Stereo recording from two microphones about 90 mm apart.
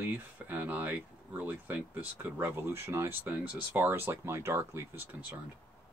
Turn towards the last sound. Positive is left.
turn(degrees=-20)  # may be behind; listen again after turning